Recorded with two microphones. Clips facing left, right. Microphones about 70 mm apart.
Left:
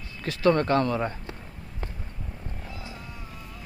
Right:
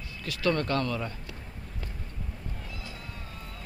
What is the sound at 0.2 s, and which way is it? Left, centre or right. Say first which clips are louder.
Speech: left 6 dB; left.